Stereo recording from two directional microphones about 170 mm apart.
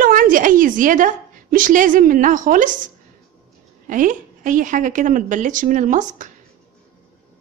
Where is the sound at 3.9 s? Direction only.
50° right (ahead or behind).